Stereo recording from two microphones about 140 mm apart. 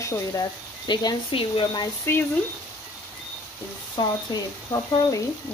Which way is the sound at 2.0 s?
15° left (ahead or behind).